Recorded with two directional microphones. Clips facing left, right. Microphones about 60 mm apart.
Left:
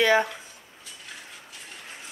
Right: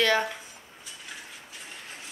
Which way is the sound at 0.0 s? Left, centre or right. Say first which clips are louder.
Left 3 dB; centre.